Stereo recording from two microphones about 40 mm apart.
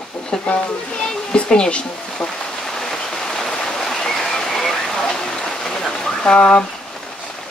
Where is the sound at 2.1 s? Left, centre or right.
Centre.